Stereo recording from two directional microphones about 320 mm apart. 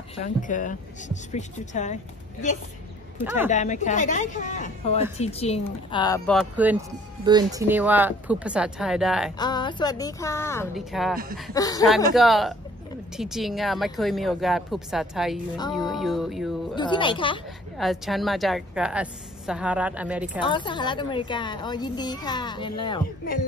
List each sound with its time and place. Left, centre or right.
0.1 s speech: left
3.2 s speech: centre
3.4 s a woman's voice: left; by 9.3 s centre
9.4 s a child's voice: centre
11.5 s a child's voice: centre
12.2 s a woman's voice: centre
16.7 s a child's voice: centre
17.7 s a woman's voice: centre
20.4 s a child's voice: centre